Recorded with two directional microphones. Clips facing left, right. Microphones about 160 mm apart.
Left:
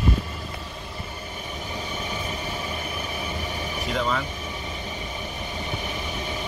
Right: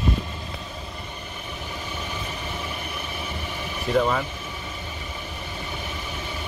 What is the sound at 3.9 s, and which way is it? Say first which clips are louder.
Speech: right 5 dB; 10° right (ahead or behind).